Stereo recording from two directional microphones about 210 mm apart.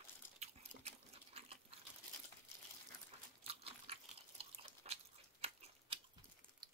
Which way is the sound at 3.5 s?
30° right (ahead or behind).